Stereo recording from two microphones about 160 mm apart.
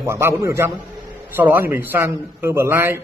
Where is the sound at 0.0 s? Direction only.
15° right (ahead or behind).